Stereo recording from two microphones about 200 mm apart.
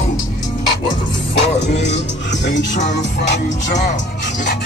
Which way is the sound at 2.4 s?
60° left (ahead or behind).